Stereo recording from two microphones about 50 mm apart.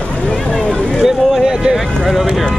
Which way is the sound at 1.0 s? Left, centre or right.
Centre.